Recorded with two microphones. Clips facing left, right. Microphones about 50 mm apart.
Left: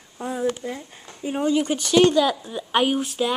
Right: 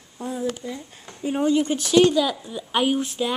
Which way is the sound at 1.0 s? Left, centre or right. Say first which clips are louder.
Right 1 dB; centre.